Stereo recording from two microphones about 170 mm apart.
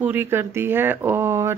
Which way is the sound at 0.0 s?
10° right (ahead or behind).